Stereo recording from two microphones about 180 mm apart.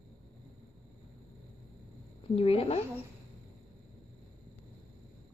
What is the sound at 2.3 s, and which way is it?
Speech, 35° left (ahead or behind).